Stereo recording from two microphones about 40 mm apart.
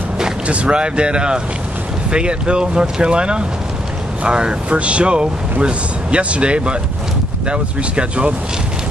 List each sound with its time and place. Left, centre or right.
0.5 s speech: right